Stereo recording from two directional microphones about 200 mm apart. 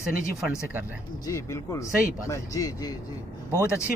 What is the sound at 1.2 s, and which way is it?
A man's voice, 15° left (ahead or behind).